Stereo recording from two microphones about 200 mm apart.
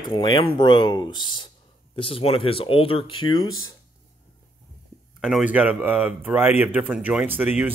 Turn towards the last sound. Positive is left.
turn(degrees=-10)  # may be behind; listen again after turning